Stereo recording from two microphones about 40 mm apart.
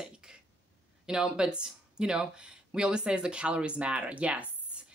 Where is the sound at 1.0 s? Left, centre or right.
Centre.